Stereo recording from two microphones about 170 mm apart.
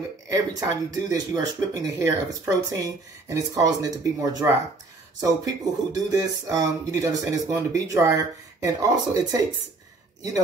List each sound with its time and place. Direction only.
0.3 s speech: 20° right (ahead or behind)